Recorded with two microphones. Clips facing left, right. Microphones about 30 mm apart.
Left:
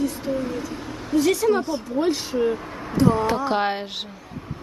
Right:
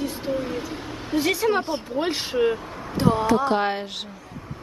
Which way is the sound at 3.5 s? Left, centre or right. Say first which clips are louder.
Even; centre.